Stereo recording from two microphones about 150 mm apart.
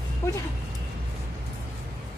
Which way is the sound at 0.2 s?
15° left (ahead or behind).